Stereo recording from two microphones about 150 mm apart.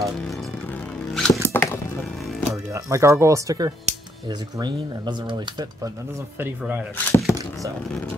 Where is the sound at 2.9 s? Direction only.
20° right (ahead or behind).